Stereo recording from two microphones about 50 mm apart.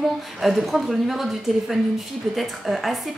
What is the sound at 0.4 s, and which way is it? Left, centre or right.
Speech, centre.